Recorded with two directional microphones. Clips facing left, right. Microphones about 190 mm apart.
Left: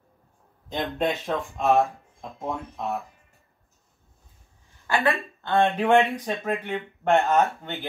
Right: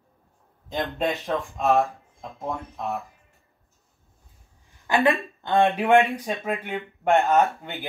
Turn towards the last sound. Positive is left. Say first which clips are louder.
# right 1 dB
turn(degrees=-10)  # may be behind; listen again after turning